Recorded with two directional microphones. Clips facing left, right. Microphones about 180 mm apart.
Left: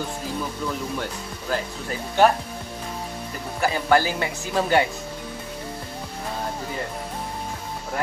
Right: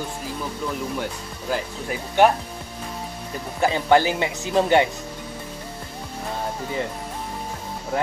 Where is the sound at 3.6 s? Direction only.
20° right (ahead or behind).